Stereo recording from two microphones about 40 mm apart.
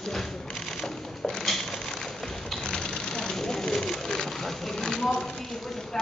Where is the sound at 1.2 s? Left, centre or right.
Centre.